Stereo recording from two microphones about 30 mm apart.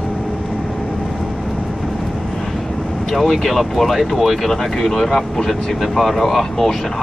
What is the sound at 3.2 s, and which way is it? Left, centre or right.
Speech, centre.